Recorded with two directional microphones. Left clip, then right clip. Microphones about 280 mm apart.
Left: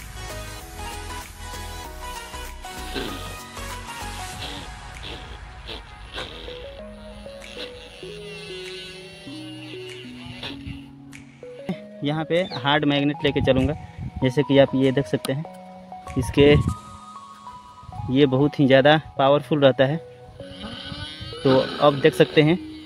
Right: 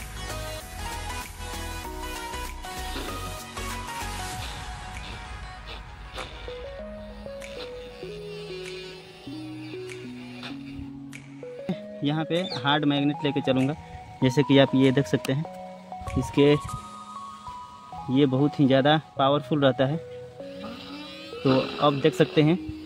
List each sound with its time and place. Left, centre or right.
7.5 s music: centre
11.6 s speech: centre
14.2 s speech: centre
16.3 s speech: centre
18.1 s speech: centre